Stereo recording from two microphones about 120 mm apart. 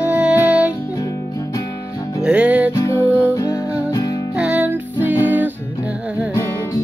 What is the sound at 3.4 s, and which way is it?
Music, 30° left (ahead or behind).